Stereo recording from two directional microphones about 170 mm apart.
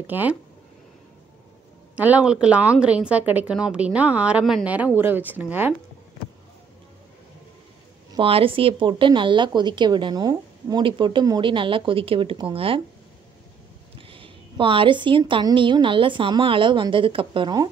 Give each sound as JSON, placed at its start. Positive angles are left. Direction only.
{"t": 0.0, "sound": "speech", "side_deg": -10}
{"t": 2.0, "sound": "speech", "side_deg": -10}
{"t": 8.1, "sound": "speech", "side_deg": -30}
{"t": 13.9, "sound": "speech", "side_deg": -30}